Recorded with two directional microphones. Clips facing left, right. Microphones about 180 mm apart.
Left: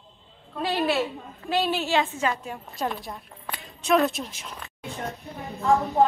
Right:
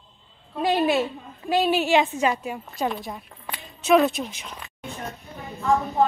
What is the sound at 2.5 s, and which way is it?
Speech, centre (ahead or behind).